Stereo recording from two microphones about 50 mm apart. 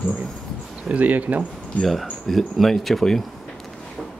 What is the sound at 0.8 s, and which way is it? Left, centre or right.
Speech, right.